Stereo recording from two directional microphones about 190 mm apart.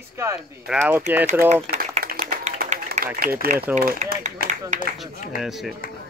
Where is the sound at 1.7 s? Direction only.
45° right (ahead or behind).